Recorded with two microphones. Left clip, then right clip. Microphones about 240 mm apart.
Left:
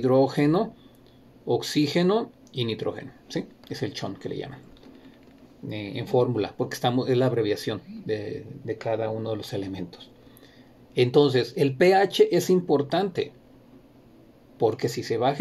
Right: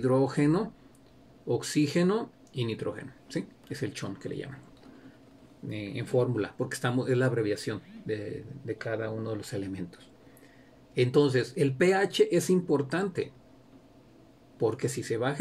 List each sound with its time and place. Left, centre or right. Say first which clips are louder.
0.0 s speech: left 5 dB; centre
5.7 s speech: left 5 dB; centre
14.6 s speech: left 5 dB; centre